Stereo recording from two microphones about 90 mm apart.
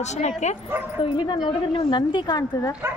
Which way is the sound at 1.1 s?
65° left (ahead or behind).